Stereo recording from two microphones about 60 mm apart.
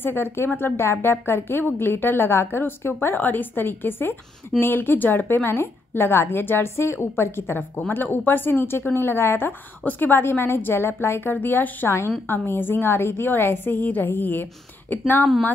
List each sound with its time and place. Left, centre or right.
0.0 s a woman's voice: left